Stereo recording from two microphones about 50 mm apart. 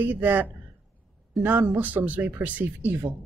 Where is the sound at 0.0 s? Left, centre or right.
Right.